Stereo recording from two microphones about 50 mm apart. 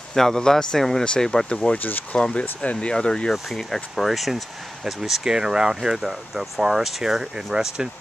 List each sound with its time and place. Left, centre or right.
0.1 s speech: centre
1.8 s speech: left
2.1 s speech: centre
3.5 s speech: centre